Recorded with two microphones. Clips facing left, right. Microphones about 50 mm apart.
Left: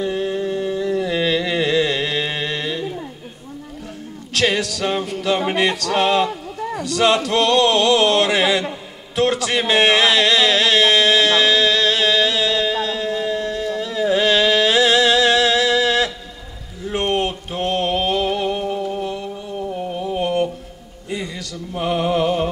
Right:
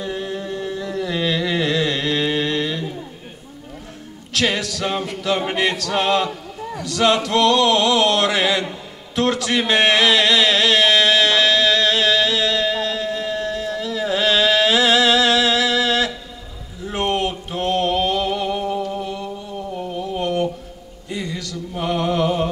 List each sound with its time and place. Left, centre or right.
0.0 s a sound: centre
4.4 s music: centre
9.1 s a man's voice: centre
10.2 s music: centre
16.9 s a sound: centre
17.3 s mantra: centre
21.1 s music: centre